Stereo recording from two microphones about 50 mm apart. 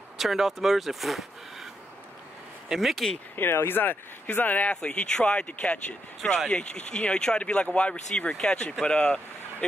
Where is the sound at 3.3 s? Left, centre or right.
Left.